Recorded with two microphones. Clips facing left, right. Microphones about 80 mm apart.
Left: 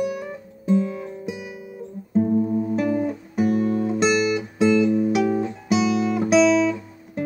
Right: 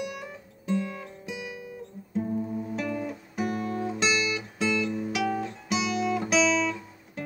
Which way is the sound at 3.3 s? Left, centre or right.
Centre.